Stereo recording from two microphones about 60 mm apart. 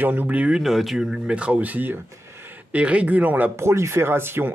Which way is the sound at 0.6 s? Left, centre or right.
Centre.